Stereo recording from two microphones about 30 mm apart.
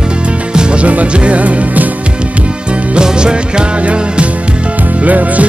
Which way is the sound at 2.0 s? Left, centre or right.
Right.